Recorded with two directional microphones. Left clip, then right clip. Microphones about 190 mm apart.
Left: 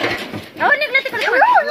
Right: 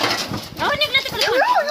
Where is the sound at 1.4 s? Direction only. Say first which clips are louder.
Left 6 dB; 15° right (ahead or behind).